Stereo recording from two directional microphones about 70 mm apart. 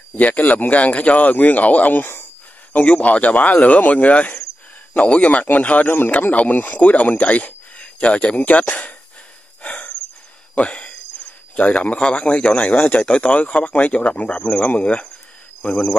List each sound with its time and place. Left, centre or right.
0.1 s speech: left
2.7 s speech: centre
9.6 s breathing: centre
10.5 s a sound: centre
11.5 s speech: centre
15.7 s speech: centre